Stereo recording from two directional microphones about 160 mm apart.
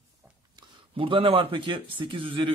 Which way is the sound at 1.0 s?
35° right (ahead or behind).